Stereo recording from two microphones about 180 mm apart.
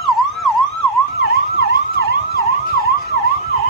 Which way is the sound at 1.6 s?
60° left (ahead or behind).